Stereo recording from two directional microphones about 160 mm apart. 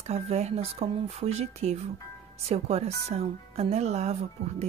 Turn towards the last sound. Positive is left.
turn(degrees=-45)  # may be behind; listen again after turning